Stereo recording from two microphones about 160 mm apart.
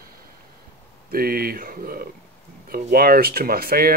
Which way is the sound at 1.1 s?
70° right (ahead or behind).